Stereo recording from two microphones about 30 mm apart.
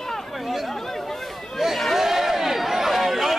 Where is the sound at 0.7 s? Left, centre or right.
Centre.